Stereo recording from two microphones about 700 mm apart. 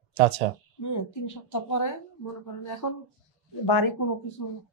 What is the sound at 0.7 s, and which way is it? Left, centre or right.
A woman's voice, left.